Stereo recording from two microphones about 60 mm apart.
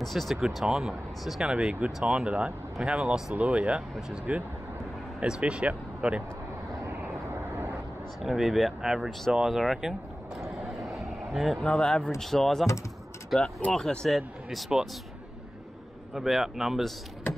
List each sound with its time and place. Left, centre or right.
0.0 s speech: centre; by 4.4 s right
5.2 s speech: centre
7.2 s vehicle: right
8.2 s speech: centre
9.3 s vehicle: centre
11.6 s speech: centre
16.2 s speech: centre